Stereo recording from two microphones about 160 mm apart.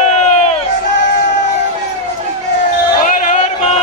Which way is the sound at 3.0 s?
50° left (ahead or behind).